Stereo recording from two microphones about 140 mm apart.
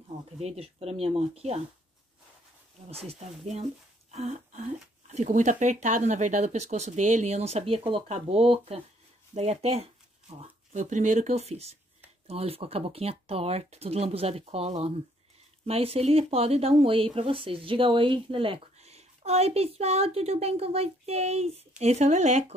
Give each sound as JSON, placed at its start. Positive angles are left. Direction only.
{"t": 0.4, "sound": "speech", "side_deg": -45}
{"t": 2.9, "sound": "speech", "side_deg": -45}
{"t": 10.7, "sound": "speech", "side_deg": -60}